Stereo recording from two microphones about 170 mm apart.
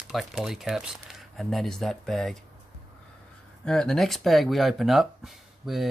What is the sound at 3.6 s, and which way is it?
Speech, 5° left (ahead or behind).